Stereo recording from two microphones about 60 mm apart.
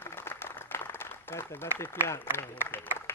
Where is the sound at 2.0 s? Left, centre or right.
Left.